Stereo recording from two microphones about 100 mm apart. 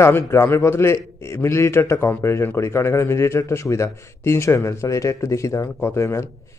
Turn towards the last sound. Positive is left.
turn(degrees=30)  # may be behind; listen again after turning